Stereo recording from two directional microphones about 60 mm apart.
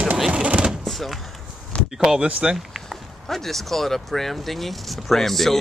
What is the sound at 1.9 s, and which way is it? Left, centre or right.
Speech, centre.